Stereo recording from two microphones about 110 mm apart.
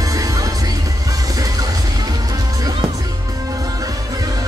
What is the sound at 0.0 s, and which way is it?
Music, 35° right (ahead or behind).